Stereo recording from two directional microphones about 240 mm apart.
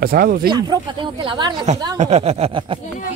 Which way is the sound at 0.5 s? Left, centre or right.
Centre.